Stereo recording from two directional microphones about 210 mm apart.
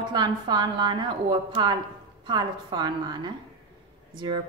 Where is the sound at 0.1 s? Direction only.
20° right (ahead or behind).